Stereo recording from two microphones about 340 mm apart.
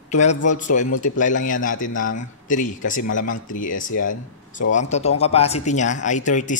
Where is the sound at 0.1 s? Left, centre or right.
Left.